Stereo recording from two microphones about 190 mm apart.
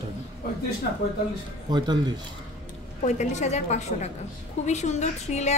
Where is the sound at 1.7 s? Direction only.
20° right (ahead or behind).